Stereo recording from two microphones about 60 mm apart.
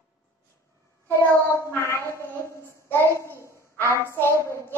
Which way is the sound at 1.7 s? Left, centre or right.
Left.